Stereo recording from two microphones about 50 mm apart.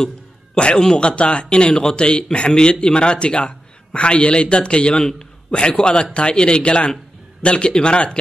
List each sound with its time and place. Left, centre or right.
0.6 s speech: centre